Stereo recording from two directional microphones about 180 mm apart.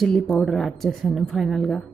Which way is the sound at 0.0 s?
Centre (ahead or behind).